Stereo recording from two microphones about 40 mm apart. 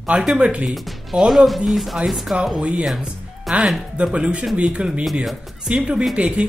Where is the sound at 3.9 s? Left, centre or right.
Right.